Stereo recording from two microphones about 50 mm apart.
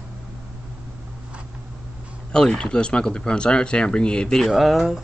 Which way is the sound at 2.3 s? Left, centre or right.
Centre.